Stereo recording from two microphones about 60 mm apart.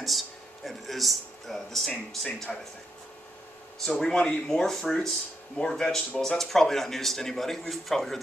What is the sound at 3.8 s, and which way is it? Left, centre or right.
Speech, centre.